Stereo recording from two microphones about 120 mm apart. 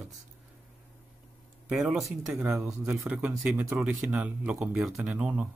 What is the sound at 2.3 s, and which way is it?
Speech, 20° right (ahead or behind).